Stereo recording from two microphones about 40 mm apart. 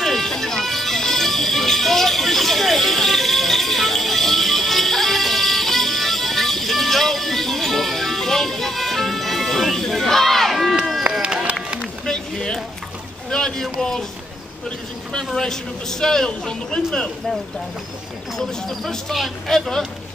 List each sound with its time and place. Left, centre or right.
0.0 s music: centre
11.1 s run: right
11.8 s run: centre
13.3 s a sound: centre
15.3 s a man's voice: centre
18.4 s a man's voice: centre